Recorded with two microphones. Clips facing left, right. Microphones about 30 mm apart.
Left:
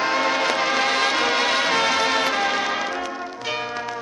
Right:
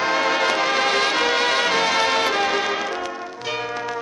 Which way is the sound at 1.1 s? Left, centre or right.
Centre.